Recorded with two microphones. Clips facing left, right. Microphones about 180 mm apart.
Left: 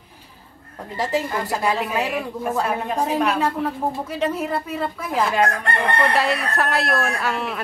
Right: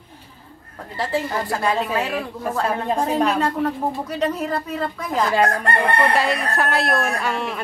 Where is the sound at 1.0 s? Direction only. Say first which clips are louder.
Even; 15° left (ahead or behind).